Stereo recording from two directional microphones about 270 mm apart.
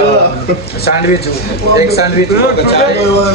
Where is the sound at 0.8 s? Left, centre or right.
Left.